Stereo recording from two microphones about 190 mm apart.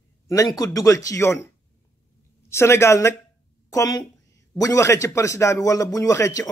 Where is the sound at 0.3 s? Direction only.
20° left (ahead or behind).